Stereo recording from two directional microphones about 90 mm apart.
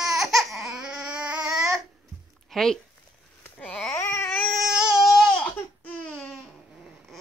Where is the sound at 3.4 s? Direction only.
20° left (ahead or behind).